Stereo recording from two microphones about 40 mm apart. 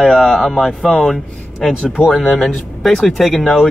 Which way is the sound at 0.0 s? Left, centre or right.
Centre.